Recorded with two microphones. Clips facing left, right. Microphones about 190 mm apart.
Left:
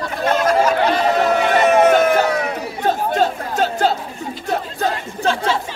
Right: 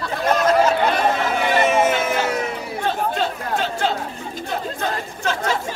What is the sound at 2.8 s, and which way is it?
Chatter, 40° left (ahead or behind).